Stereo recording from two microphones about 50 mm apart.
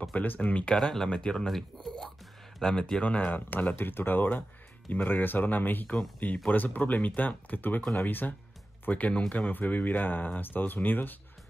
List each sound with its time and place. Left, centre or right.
0.1 s speech: left
0.7 s speech: centre
1.0 s speech: centre
2.6 s speech: centre
3.0 s speech: left